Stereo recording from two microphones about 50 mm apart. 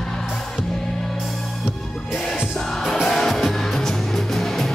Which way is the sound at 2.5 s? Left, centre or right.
Centre.